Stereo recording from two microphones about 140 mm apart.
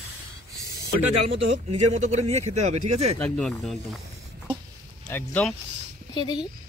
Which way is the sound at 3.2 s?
5° left (ahead or behind).